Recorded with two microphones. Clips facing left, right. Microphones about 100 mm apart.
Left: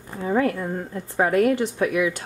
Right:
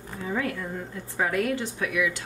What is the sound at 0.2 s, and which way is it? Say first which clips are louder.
Speech: left 8 dB; 35° left (ahead or behind).